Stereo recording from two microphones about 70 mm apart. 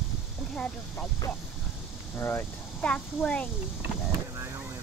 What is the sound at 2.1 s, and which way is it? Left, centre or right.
Speech, left.